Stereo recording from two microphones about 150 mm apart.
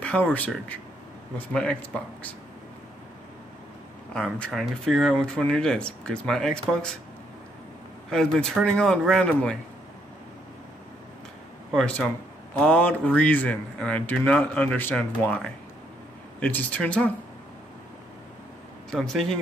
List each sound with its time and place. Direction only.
0.0 s speech: 10° left (ahead or behind)
4.1 s speech: 5° left (ahead or behind)
8.1 s speech: 5° left (ahead or behind)
11.7 s speech: 5° left (ahead or behind)
18.9 s speech: 5° left (ahead or behind)